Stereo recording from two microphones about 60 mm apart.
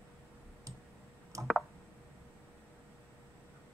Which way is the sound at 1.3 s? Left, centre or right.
Right.